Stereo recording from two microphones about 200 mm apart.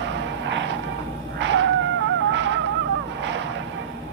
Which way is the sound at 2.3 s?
65° right (ahead or behind).